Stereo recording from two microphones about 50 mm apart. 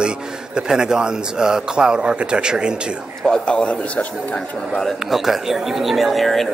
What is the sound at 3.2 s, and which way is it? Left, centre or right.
Speech, centre.